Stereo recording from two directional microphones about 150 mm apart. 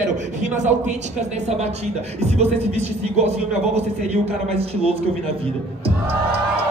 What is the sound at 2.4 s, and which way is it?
A man's voice, 45° right (ahead or behind).